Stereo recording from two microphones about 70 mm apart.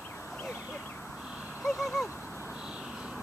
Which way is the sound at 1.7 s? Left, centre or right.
Centre.